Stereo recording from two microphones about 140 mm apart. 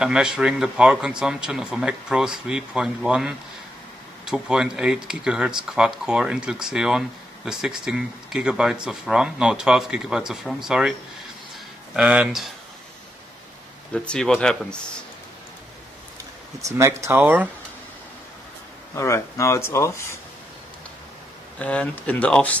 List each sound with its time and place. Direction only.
0.0 s speech: 5° right (ahead or behind)
13.9 s speech: 5° left (ahead or behind)
16.6 s speech: 20° right (ahead or behind)
18.9 s speech: 20° left (ahead or behind)
21.5 s speech: 10° left (ahead or behind)